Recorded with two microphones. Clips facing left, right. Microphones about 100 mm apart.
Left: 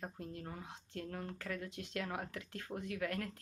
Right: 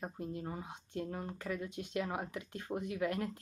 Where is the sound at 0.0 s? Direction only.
10° right (ahead or behind).